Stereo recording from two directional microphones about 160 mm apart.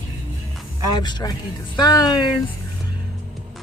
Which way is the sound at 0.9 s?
25° left (ahead or behind).